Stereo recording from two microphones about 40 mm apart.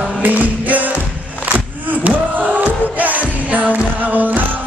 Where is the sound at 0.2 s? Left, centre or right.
Right.